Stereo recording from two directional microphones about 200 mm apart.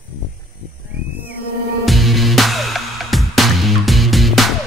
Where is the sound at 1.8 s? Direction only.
Centre (ahead or behind).